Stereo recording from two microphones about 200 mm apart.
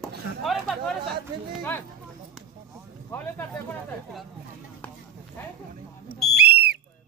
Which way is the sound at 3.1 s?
10° left (ahead or behind).